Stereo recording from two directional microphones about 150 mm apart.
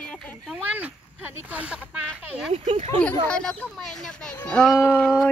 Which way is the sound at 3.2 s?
5° left (ahead or behind).